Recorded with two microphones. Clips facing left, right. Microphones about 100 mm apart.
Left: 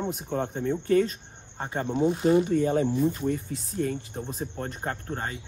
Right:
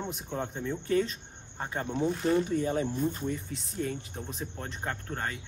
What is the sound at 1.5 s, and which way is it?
Speech, 30° left (ahead or behind).